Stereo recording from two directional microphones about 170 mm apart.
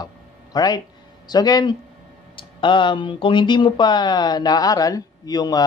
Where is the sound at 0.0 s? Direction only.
20° left (ahead or behind).